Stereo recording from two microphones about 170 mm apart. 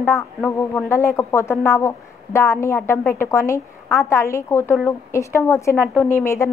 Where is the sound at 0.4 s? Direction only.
10° left (ahead or behind).